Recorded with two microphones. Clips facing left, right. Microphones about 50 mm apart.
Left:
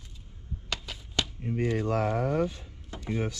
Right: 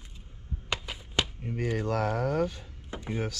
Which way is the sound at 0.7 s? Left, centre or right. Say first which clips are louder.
Right 2 dB; centre.